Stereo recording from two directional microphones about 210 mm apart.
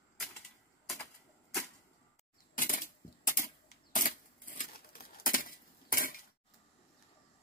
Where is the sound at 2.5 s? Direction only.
40° left (ahead or behind).